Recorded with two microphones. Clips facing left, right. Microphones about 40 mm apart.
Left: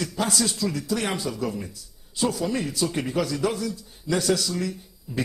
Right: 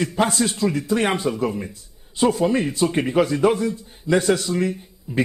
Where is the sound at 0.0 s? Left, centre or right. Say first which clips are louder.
Right 5 dB; right.